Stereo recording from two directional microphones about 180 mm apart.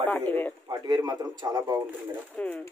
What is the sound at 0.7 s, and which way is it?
A man's voice, 25° right (ahead or behind).